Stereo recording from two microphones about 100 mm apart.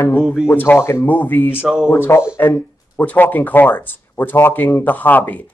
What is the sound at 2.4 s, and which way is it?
Speech, 20° left (ahead or behind).